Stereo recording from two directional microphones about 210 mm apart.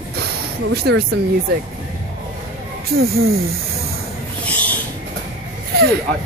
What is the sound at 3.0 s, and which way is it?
Speech, 45° right (ahead or behind).